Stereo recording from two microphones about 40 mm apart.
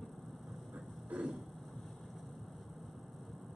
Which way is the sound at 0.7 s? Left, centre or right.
Right.